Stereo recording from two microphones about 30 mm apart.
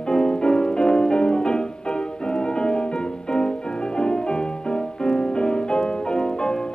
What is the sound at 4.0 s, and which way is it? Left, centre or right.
Music, left.